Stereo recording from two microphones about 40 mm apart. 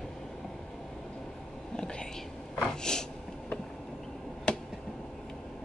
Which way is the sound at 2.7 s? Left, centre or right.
Centre.